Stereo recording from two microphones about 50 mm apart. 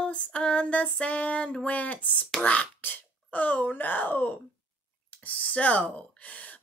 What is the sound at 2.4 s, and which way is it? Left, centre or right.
Female singing, left.